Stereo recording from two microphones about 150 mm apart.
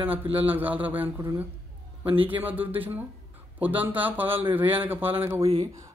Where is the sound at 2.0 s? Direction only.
40° right (ahead or behind).